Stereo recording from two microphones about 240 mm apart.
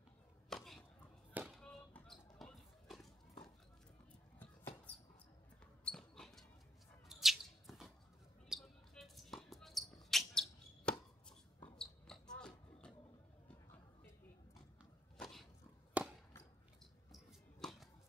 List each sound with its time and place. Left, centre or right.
0.5 s chopping: centre
1.3 s basketball bounce: centre
4.4 s a sound: centre
5.9 s basketball bounce: centre
7.1 s mouse: centre
8.5 s basketball bounce: centre
15.1 s a sound: centre
16.0 s chop: centre
17.1 s a sound: centre